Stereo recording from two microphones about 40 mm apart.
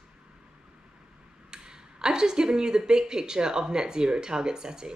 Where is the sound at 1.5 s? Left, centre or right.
Centre.